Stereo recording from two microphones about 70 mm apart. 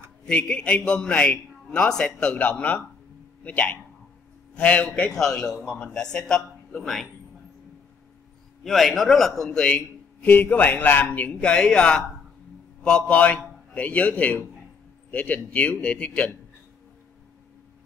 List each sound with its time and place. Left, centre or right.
0.2 s a man's voice: centre
5.1 s a man's voice: centre
8.6 s a man's voice: centre
10.2 s a man's voice: left